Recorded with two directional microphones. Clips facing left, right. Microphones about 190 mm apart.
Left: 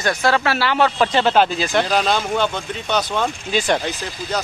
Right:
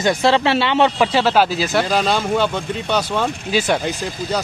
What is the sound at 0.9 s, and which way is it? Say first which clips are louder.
Speech: even; 10° right (ahead or behind).